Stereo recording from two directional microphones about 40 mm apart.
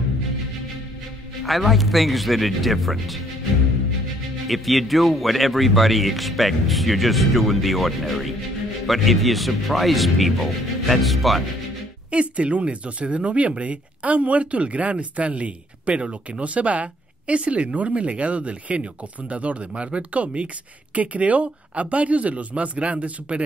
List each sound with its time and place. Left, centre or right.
1.4 s speech: centre
4.5 s speech: centre
12.1 s speech: right